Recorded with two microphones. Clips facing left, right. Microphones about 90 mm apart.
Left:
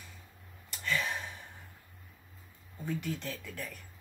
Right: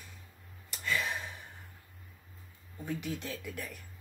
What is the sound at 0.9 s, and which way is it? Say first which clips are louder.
Gasp: even; 5° right (ahead or behind).